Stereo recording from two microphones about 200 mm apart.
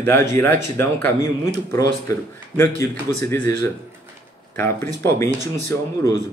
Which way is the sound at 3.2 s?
10° left (ahead or behind).